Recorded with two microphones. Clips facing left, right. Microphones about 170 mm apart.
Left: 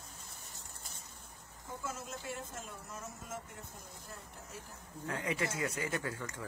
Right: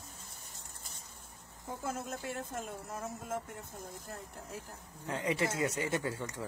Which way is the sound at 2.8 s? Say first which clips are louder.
Right 6 dB; 60° right (ahead or behind).